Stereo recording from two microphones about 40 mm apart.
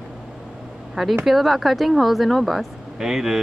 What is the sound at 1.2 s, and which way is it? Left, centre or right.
Speech, centre.